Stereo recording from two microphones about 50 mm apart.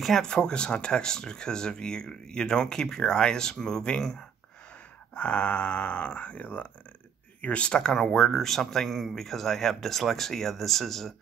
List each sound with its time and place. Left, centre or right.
0.0 s speech: centre
5.1 s speech: left; by 11.1 s centre